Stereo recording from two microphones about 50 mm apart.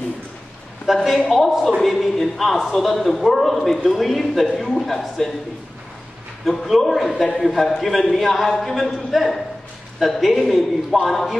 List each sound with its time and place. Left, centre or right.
0.8 s a man's voice: centre
6.4 s a man's voice: centre